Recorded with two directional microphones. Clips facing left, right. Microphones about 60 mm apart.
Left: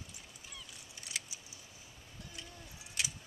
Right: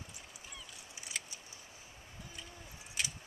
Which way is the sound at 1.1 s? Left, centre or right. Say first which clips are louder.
Even; centre.